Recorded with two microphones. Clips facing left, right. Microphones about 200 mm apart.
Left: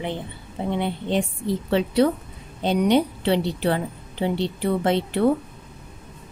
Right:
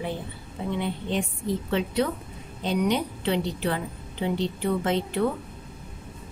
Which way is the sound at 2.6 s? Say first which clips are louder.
Left 6 dB; 30° left (ahead or behind).